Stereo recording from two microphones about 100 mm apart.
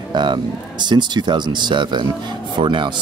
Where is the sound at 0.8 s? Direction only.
45° right (ahead or behind).